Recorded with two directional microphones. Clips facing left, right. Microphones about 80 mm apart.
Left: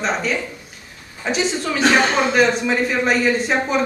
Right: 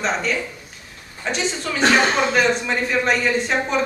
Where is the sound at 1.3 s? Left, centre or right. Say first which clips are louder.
Left 4 dB; centre.